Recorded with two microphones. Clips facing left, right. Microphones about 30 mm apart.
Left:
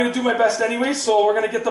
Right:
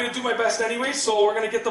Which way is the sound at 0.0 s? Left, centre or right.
Centre.